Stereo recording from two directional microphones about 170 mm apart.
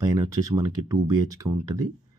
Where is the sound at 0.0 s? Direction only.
20° right (ahead or behind).